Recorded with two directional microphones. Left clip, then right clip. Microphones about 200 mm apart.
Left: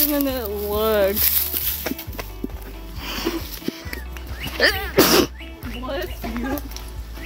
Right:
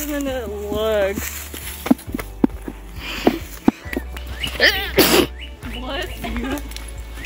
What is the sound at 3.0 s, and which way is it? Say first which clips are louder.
Music: right 7 dB; 10° left (ahead or behind).